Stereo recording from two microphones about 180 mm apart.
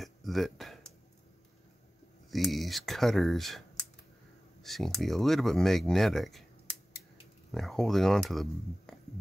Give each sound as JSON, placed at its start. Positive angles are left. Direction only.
{"t": 0.0, "sound": "a sound", "side_deg": 0}
{"t": 2.3, "sound": "speech", "side_deg": 0}
{"t": 7.5, "sound": "speech", "side_deg": 0}